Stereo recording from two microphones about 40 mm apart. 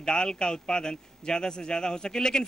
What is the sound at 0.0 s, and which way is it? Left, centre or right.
A man's voice, left.